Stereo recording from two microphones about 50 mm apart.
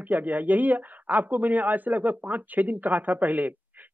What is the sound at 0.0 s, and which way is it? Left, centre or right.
Speech, right.